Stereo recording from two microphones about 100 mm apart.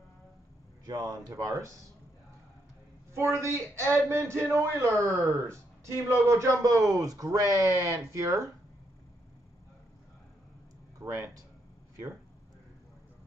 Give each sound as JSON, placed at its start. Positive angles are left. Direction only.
{"t": 0.8, "sound": "a man's voice", "side_deg": -40}
{"t": 3.2, "sound": "a man's voice", "side_deg": -25}
{"t": 11.0, "sound": "speech", "side_deg": -30}